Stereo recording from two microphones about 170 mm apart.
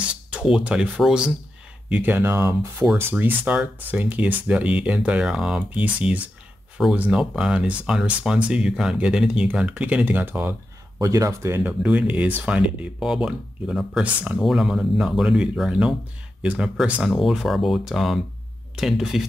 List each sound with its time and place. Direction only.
0.3 s speech: 5° right (ahead or behind)